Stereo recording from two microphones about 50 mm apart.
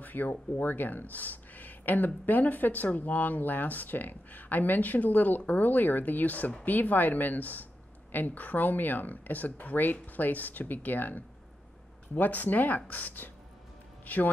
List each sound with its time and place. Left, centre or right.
0.0 s a man's voice: left